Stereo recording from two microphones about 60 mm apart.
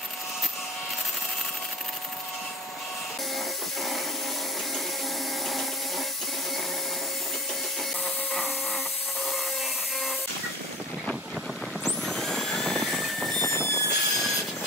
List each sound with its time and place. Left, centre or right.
11.8 s vehicle: centre
13.5 s vehicle: left
13.8 s vehicle: centre